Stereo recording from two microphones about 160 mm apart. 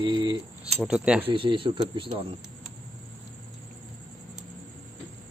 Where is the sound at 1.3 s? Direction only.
30° right (ahead or behind).